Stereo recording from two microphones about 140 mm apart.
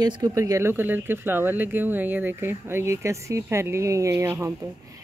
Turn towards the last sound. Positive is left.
turn(degrees=-20)  # may be behind; listen again after turning